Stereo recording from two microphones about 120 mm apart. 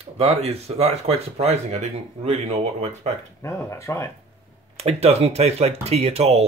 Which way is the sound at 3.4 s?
25° left (ahead or behind).